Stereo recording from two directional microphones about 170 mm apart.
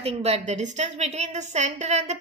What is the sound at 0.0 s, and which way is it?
A woman's voice, 40° right (ahead or behind).